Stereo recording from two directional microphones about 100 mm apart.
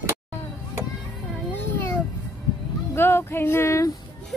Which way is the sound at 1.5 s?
20° left (ahead or behind).